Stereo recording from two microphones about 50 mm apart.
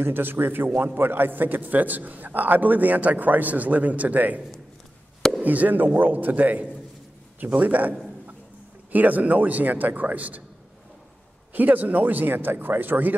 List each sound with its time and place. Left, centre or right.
0.0 s a man's voice: right
5.4 s a man's voice: right
8.9 s a man's voice: right
11.5 s a man's voice: right